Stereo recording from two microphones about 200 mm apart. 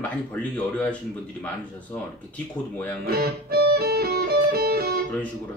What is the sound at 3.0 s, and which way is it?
Music, 50° right (ahead or behind).